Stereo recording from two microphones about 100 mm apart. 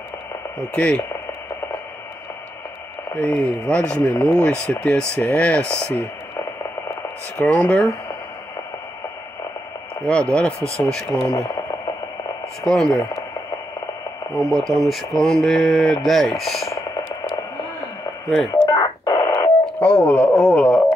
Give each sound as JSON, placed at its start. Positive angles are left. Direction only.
{"t": 0.7, "sound": "speech", "side_deg": 10}
{"t": 3.2, "sound": "speech", "side_deg": 15}
{"t": 7.3, "sound": "speech", "side_deg": 15}
{"t": 10.0, "sound": "speech", "side_deg": 10}
{"t": 12.6, "sound": "speech", "side_deg": 5}
{"t": 14.3, "sound": "speech", "side_deg": 5}
{"t": 18.5, "sound": "telephone dialing", "side_deg": 35}
{"t": 19.6, "sound": "a sound", "side_deg": 10}